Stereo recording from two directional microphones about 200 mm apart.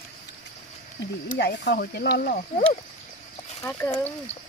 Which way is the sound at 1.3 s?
55° left (ahead or behind).